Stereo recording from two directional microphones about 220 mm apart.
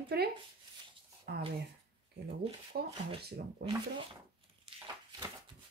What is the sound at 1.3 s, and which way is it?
Speech, 50° right (ahead or behind).